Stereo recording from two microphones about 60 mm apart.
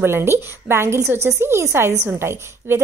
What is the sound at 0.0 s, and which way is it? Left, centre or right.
A woman's voice, right.